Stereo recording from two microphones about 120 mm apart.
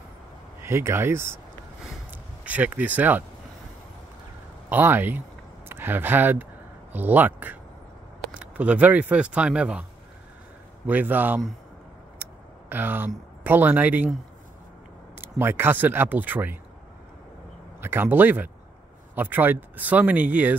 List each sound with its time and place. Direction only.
0.6 s speech: 20° right (ahead or behind)
4.6 s speech: 15° right (ahead or behind)
10.9 s speech: 15° right (ahead or behind)
15.1 s speech: 20° right (ahead or behind)
17.7 s speech: 20° right (ahead or behind)